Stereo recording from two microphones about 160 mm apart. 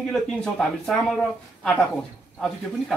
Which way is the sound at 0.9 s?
5° left (ahead or behind).